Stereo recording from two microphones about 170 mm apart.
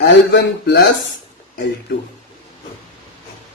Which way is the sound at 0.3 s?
90° left.